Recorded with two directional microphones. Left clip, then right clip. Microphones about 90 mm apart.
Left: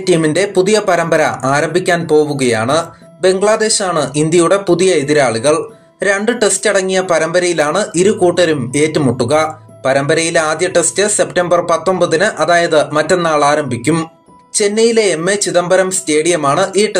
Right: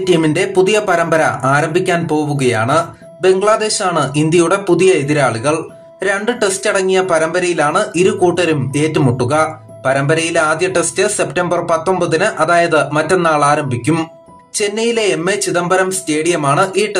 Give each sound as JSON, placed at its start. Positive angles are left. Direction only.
{"t": 0.0, "sound": "speech", "side_deg": 25}